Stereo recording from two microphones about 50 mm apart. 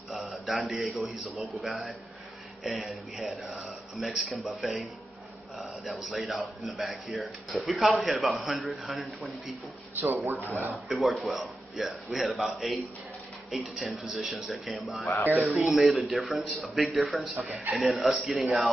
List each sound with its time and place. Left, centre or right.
0.5 s a man's voice: centre
10.0 s speech: right
10.9 s a man's voice: centre